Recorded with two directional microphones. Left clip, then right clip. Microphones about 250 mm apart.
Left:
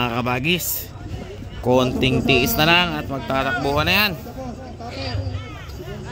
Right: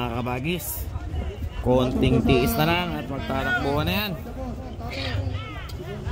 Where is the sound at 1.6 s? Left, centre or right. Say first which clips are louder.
Left 4 dB; centre.